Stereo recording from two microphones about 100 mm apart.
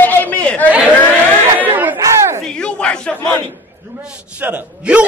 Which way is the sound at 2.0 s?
30° right (ahead or behind).